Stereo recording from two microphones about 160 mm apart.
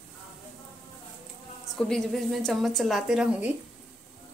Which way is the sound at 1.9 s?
Centre (ahead or behind).